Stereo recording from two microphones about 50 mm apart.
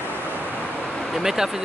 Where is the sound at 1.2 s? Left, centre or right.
Centre.